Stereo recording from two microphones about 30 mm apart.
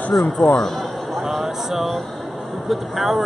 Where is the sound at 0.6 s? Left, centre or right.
Centre.